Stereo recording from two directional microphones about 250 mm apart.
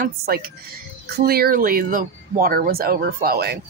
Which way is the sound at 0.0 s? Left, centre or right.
Right.